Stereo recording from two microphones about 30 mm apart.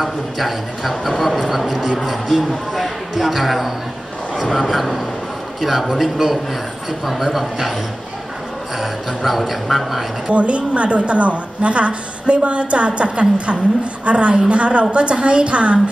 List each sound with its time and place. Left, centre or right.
0.0 s speech: centre
8.7 s speech: centre
10.3 s a woman's voice: right